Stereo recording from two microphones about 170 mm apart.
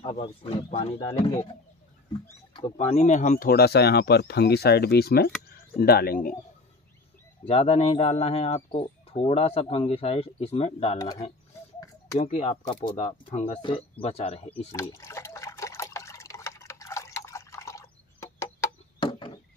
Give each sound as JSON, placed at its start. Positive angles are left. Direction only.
{"t": 0.0, "sound": "speech", "side_deg": 35}
{"t": 2.5, "sound": "speech", "side_deg": 35}
{"t": 7.4, "sound": "speech", "side_deg": 35}
{"t": 14.7, "sound": "liquid", "side_deg": 20}
{"t": 19.0, "sound": "chop", "side_deg": 30}